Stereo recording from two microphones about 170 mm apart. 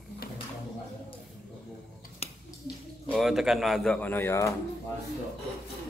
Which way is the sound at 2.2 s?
35° left (ahead or behind).